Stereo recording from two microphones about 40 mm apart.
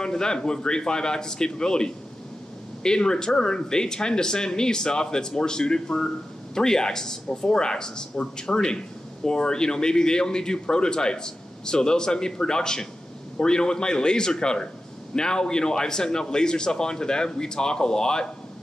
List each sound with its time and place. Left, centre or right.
0.0 s a man's voice: centre